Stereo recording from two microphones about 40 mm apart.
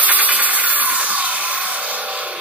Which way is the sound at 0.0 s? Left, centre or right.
Right.